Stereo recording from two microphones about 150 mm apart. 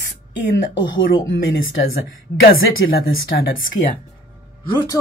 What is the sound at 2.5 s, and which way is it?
Speech, 85° left.